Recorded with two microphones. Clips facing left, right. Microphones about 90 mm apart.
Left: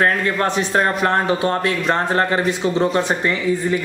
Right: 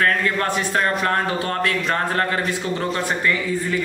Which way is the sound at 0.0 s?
25° left (ahead or behind).